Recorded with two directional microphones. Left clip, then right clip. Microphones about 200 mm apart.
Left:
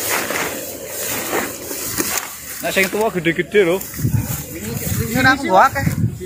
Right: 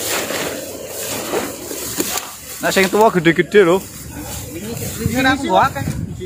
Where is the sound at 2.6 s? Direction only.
35° right (ahead or behind).